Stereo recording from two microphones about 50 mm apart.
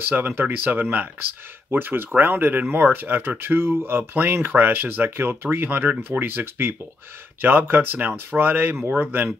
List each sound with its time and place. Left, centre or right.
0.4 s speech: right